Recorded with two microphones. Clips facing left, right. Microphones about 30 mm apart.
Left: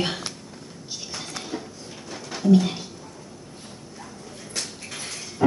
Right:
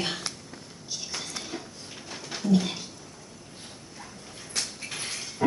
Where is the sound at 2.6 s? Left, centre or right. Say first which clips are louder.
Left 5 dB; centre.